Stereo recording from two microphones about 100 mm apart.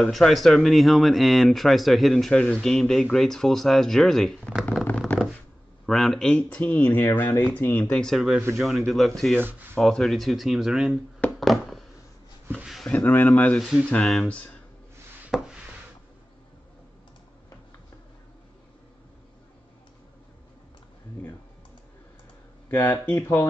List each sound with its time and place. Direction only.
0.0 s speech: 5° left (ahead or behind)
4.8 s a sound: 15° left (ahead or behind)
5.9 s speech: 5° left (ahead or behind); by 7.8 s 20° left (ahead or behind)
7.8 s speech: 5° left (ahead or behind)
9.4 s speech: 20° right (ahead or behind)
9.8 s speech: centre (ahead or behind)
11.1 s a sound: 10° left (ahead or behind)
12.9 s speech: 20° left (ahead or behind)
13.6 s speech: 5° right (ahead or behind)
15.3 s a sound: 5° right (ahead or behind)
22.7 s speech: 15° left (ahead or behind)